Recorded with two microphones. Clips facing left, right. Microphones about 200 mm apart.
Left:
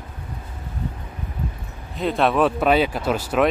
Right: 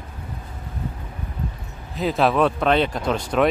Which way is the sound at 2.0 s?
Centre (ahead or behind).